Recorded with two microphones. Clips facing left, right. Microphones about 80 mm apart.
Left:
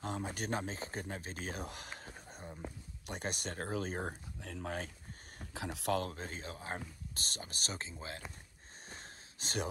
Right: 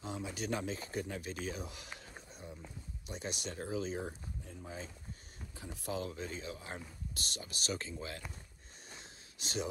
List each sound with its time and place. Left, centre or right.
0.0 s speech: left
4.4 s speech: left
5.5 s speech: left
5.9 s speech: left
8.8 s a sound: left